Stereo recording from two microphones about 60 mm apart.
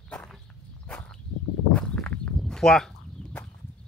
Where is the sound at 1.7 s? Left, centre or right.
Centre.